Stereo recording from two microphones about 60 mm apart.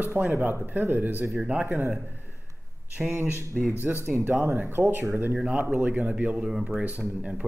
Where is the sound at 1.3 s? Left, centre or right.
Centre.